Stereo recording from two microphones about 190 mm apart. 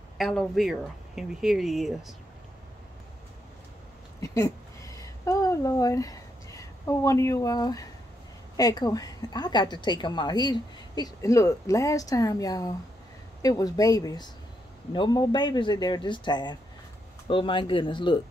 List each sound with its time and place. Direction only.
0.2 s speech: centre (ahead or behind)
4.2 s a sound: 15° left (ahead or behind)
8.5 s a woman's voice: 20° left (ahead or behind)